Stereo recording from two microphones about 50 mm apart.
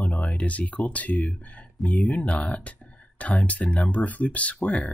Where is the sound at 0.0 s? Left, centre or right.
Left.